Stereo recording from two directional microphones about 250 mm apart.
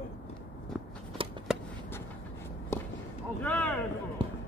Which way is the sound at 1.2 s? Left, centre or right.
Right.